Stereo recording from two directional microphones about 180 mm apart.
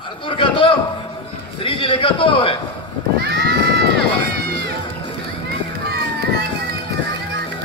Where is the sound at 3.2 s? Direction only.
60° right (ahead or behind).